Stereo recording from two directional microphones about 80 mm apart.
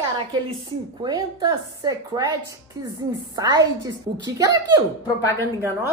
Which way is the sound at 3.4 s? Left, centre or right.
Right.